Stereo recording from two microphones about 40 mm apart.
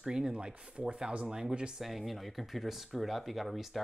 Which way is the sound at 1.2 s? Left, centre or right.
Centre.